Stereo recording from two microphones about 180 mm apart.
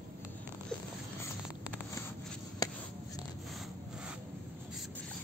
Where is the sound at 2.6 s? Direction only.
20° left (ahead or behind).